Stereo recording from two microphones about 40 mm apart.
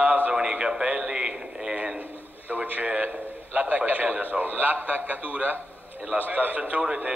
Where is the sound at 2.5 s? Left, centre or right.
Right.